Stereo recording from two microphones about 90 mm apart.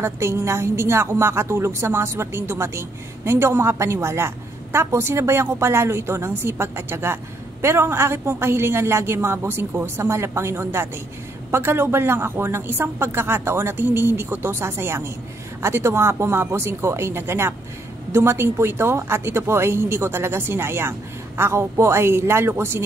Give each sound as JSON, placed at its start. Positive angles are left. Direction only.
{"t": 0.0, "sound": "a woman's voice", "side_deg": -30}